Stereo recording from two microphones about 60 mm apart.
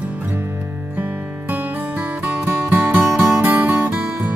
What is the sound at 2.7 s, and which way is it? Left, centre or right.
Music, right.